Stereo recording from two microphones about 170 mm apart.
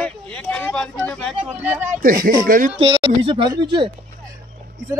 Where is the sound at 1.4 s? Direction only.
10° right (ahead or behind).